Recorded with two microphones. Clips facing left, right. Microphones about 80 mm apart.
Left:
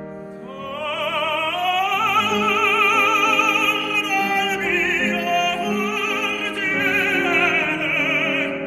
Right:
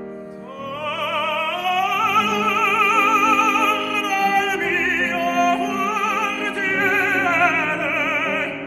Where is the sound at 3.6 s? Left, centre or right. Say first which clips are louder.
Right 2 dB; right.